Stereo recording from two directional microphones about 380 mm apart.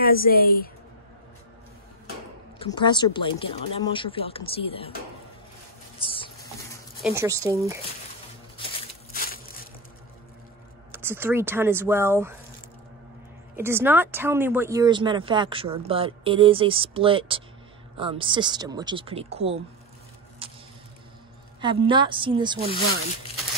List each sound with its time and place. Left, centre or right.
0.0 s a woman's voice: left
2.6 s speech: centre
5.9 s a sound: centre
7.0 s speech: centre
9.1 s a sound: left
10.9 s speech: centre
13.6 s speech: centre
20.4 s a sound: centre
21.5 s speech: centre